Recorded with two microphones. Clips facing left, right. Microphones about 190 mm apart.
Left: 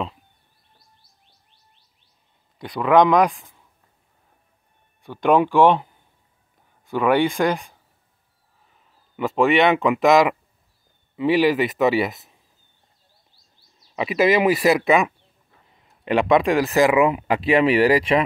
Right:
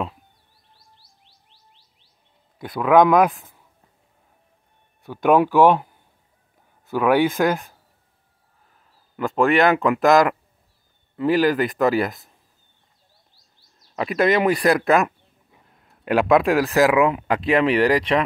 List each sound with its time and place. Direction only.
0.9 s music: 90° right
2.6 s speech: 5° right (ahead or behind)
5.0 s speech: 5° right (ahead or behind)
6.9 s speech: 5° right (ahead or behind)
9.1 s speech: centre (ahead or behind)
13.9 s speech: 5° left (ahead or behind)